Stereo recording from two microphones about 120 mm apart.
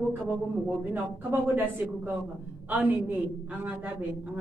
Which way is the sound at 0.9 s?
15° right (ahead or behind).